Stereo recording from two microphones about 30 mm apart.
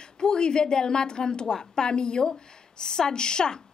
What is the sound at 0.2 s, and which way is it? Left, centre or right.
A woman's voice, left.